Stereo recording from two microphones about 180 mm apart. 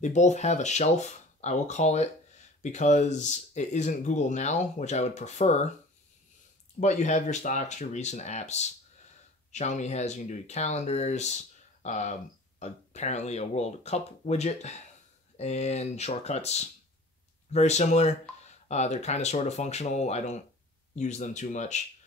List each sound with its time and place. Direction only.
0.0 s speech: 40° left (ahead or behind)
6.8 s speech: 40° left (ahead or behind)